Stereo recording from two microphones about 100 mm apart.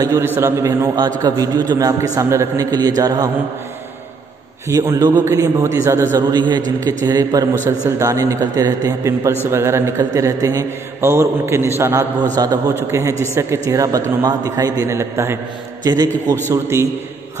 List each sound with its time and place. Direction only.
0.2 s a man's voice: 20° right (ahead or behind)
0.9 s a man's voice: 45° right (ahead or behind)
4.6 s a man's voice: 30° right (ahead or behind)
6.1 s a man's voice: 45° right (ahead or behind); by 15.3 s 30° right (ahead or behind)
15.8 s a man's voice: 40° right (ahead or behind)
16.4 s a man's voice: 25° right (ahead or behind)